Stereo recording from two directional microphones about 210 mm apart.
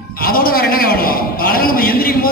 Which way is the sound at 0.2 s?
45° left (ahead or behind).